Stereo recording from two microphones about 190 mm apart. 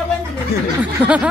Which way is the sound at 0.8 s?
5° right (ahead or behind).